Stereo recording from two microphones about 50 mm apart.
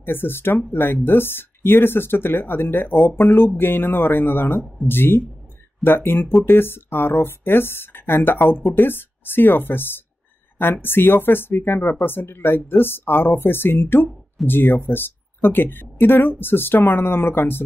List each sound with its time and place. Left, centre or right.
0.0 s speech: left